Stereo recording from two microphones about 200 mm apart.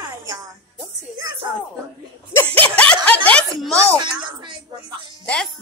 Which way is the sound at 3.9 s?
20° right (ahead or behind).